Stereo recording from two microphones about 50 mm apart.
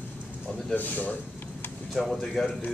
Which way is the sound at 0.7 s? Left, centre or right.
Left.